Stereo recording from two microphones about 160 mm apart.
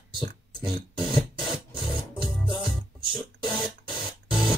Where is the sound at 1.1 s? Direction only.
5° right (ahead or behind).